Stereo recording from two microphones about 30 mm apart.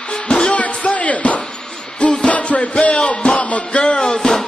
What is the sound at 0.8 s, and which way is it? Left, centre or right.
Music, left.